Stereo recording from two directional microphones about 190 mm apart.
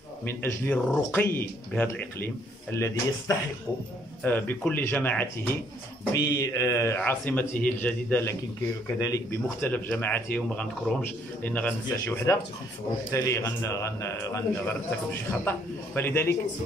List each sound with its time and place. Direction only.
0.2 s speech: 10° left (ahead or behind)
6.1 s speech: 20° left (ahead or behind)
15.4 s speech: 10° left (ahead or behind)